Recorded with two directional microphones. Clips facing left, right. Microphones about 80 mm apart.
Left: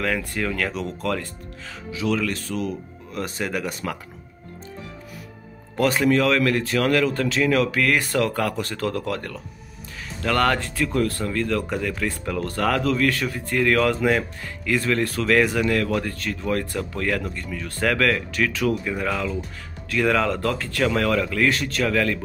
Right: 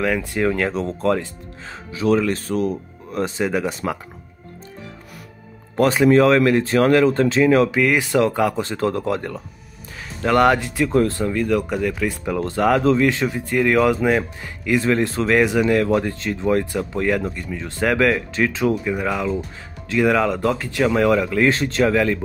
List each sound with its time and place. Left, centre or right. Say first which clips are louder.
0.4 s speech: right 6 dB; right
6.0 s speech: right 7 dB; right
7.8 s speech: right 4 dB; centre
11.3 s speech: right 3 dB; centre
12.4 s speech: right 5 dB; centre
18.9 s speech: right 4 dB; centre
21.5 s speech: right 5 dB; right